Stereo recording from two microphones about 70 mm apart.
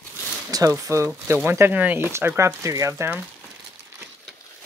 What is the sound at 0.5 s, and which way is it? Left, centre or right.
Speech, right.